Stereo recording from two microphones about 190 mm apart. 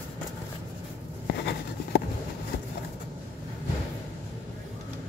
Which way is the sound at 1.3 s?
65° left (ahead or behind).